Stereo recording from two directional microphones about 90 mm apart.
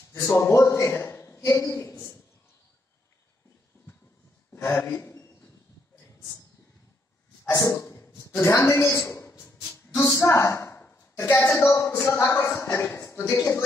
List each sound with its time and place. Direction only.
0.2 s a man's voice: 25° left (ahead or behind)
4.7 s a man's voice: 25° left (ahead or behind)
7.5 s a sound: 35° left (ahead or behind)
8.5 s a man's voice: 30° left (ahead or behind)
9.3 s a sound: 30° left (ahead or behind)
10.8 s a woman's voice: 20° left (ahead or behind)